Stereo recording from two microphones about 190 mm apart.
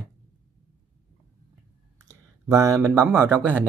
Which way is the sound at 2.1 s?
15° right (ahead or behind).